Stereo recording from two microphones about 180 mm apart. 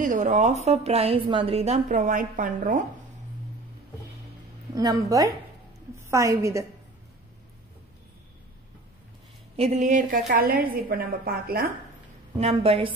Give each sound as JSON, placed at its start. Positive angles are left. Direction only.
{"t": 0.0, "sound": "a woman's voice", "side_deg": -45}
{"t": 4.7, "sound": "a woman's voice", "side_deg": -20}
{"t": 9.6, "sound": "a woman's voice", "side_deg": -40}
{"t": 10.2, "sound": "a woman's voice", "side_deg": -55}
{"t": 12.4, "sound": "a woman's voice", "side_deg": -35}